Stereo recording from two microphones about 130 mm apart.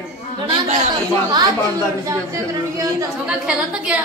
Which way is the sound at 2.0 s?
25° right (ahead or behind).